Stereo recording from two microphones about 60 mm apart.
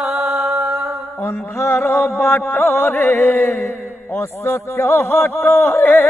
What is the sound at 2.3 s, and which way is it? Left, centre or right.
Speech, left.